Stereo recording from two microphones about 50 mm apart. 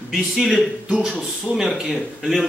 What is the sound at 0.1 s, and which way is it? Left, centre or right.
Speech, centre.